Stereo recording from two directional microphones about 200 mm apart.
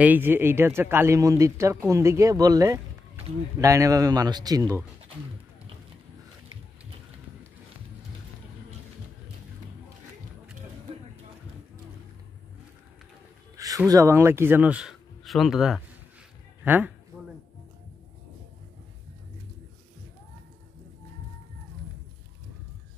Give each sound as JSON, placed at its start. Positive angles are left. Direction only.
{"t": 0.0, "sound": "speech", "side_deg": -10}
{"t": 13.6, "sound": "speech", "side_deg": -15}